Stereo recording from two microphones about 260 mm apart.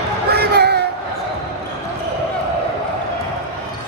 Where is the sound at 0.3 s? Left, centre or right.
Right.